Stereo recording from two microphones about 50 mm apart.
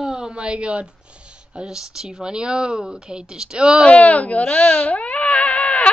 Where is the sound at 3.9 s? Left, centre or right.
Left.